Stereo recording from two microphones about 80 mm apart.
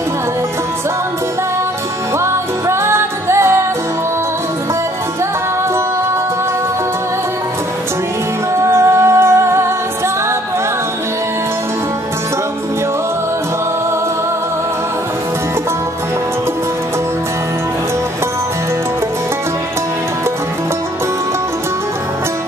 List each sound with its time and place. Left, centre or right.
2.1 s music: right
8.5 s music: right